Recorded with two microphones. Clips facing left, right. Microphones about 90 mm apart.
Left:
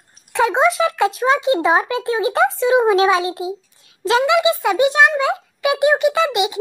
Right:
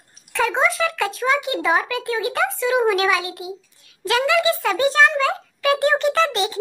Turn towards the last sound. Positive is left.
turn(degrees=15)  # may be behind; listen again after turning